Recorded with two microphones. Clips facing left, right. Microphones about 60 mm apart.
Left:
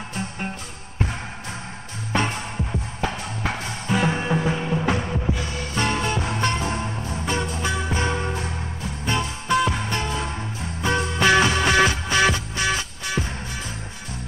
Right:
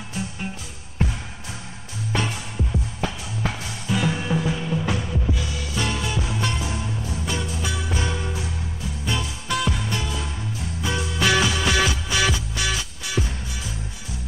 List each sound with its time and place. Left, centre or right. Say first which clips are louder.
2.1 s music: left 3 dB; left
5.3 s music: left 2 dB; left
9.5 s music: left 4 dB; left
9.8 s music: left 2 dB; left
11.2 s music: left 3 dB; left